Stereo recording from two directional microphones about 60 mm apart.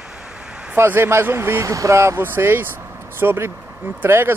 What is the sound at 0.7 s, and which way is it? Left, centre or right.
Speech, right.